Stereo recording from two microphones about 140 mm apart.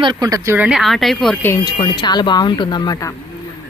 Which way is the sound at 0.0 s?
30° right (ahead or behind).